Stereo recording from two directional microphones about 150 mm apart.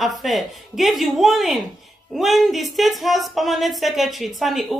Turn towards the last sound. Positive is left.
turn(degrees=0)  # may be behind; listen again after turning